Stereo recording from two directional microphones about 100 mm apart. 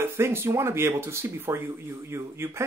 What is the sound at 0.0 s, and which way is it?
Speech, 25° right (ahead or behind).